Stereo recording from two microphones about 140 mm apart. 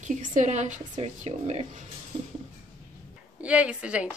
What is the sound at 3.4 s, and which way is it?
Speech, 10° right (ahead or behind).